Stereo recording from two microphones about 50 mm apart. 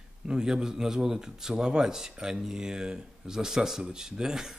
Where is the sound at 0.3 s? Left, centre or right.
Centre.